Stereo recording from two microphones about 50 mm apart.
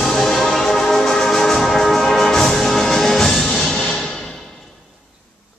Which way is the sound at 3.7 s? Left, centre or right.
Left.